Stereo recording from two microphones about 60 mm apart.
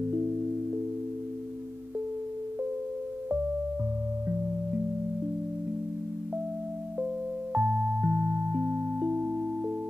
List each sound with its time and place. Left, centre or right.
7.5 s music: centre